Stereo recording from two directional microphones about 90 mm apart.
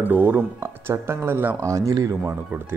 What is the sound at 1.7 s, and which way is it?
Speech, 40° right (ahead or behind).